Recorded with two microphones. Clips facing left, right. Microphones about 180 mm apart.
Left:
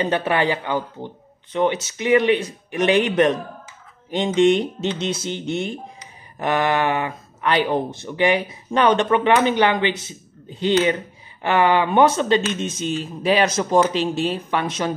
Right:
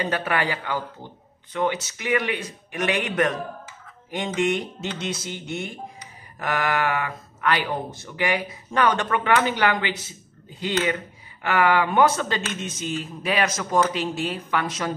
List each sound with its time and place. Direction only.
0.0 s speech: 25° left (ahead or behind)